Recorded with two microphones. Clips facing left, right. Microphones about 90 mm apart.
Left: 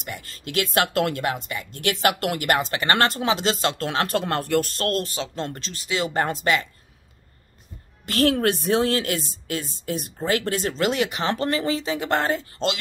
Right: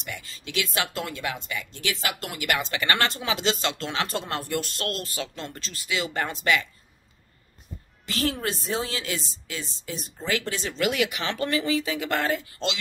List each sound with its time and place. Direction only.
0.1 s a woman's voice: 45° left (ahead or behind)
1.5 s speech: 40° left (ahead or behind)
1.8 s a woman's voice: 55° left (ahead or behind)
4.6 s speech: 40° left (ahead or behind)
5.0 s speech: 25° left (ahead or behind)
8.0 s a woman's voice: 55° left (ahead or behind)
10.7 s speech: 30° left (ahead or behind)